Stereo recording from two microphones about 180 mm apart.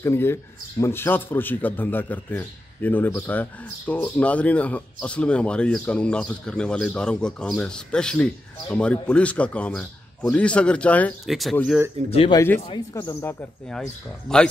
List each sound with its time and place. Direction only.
0.0 s a man's voice: 15° left (ahead or behind)
12.1 s speech: 30° left (ahead or behind)
12.4 s a man's voice: 15° left (ahead or behind)
12.6 s speech: 25° left (ahead or behind)
13.0 s a man's voice: 10° left (ahead or behind)